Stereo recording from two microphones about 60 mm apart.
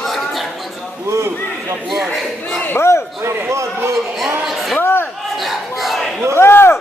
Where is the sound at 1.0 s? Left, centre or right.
Right.